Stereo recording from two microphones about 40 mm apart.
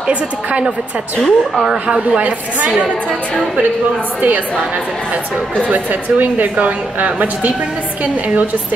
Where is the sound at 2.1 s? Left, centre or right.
Right.